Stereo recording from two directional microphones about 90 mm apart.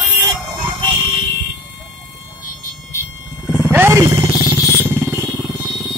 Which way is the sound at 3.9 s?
30° right (ahead or behind).